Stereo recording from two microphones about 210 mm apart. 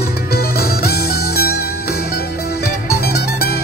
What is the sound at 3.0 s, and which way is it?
Music, 50° left (ahead or behind).